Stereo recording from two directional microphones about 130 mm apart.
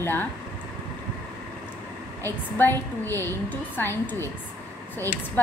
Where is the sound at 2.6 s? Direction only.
15° left (ahead or behind).